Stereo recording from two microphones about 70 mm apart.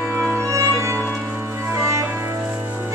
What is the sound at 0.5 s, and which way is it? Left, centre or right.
Music, right.